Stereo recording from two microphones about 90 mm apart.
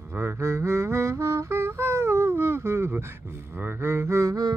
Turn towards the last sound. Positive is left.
turn(degrees=-40)  # may be behind; listen again after turning